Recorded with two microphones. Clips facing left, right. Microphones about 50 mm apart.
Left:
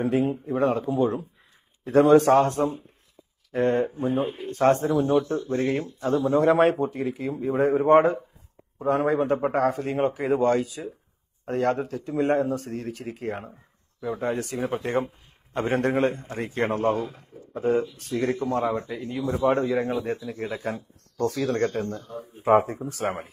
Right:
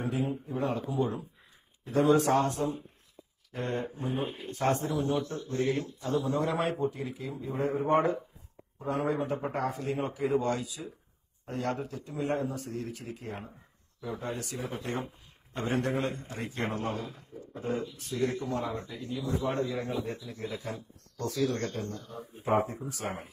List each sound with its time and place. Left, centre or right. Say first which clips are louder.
0.1 s a man's voice: left 8 dB; left
4.1 s speech: left 7 dB; centre
4.5 s a man's voice: left 9 dB; left
5.1 s a man's voice: left 9 dB; left
19.0 s a man's voice: left 9 dB; left
21.2 s speech: left 6 dB; left
21.7 s a man's voice: left 7 dB; left
22.8 s speech: left 8 dB; left